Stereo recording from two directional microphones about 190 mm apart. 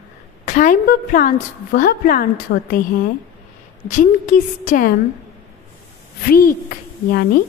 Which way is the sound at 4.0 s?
40° left (ahead or behind).